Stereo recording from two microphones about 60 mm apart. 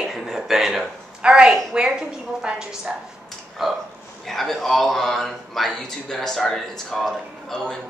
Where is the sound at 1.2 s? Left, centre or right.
Centre.